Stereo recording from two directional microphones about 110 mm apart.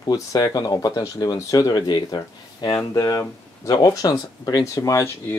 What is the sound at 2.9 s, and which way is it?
Speech, 30° left (ahead or behind).